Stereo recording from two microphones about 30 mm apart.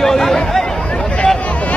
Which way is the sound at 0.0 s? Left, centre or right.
Centre.